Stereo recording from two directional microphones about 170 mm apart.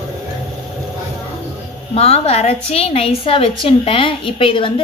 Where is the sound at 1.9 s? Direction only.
35° left (ahead or behind).